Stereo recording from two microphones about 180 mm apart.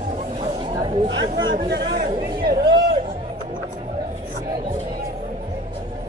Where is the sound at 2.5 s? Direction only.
65° right (ahead or behind).